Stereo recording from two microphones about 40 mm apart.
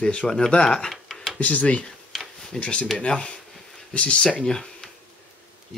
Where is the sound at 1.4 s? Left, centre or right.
Left.